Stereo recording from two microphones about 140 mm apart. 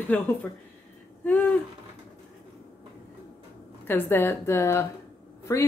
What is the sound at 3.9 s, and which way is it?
Speech, 15° left (ahead or behind).